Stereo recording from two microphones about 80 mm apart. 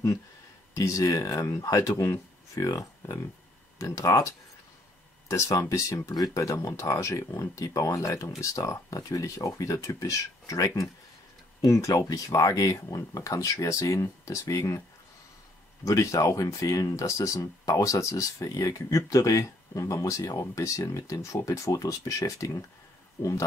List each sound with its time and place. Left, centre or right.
0.7 s speech: left
5.3 s speech: left
15.8 s speech: left
23.2 s speech: left